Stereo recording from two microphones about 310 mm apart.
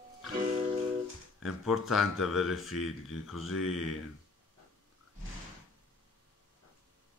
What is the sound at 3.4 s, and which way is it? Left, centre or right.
Speech, left.